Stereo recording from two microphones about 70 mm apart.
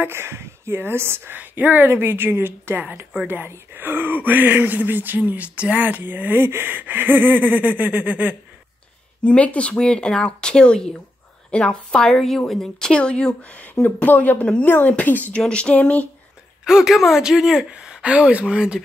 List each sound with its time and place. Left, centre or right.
0.0 s speech: right
9.2 s a woman's voice: centre
16.6 s speech: centre